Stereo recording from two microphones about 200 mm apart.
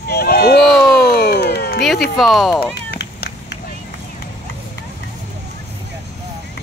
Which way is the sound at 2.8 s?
55° left (ahead or behind).